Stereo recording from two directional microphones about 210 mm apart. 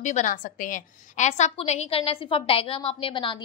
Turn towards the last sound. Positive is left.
turn(degrees=25)  # may be behind; listen again after turning